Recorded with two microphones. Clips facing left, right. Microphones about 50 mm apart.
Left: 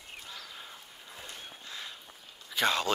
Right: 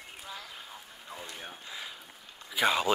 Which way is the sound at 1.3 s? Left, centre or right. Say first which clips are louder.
Right 2 dB; centre.